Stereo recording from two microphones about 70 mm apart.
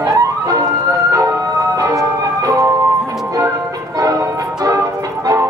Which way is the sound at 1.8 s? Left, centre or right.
Right.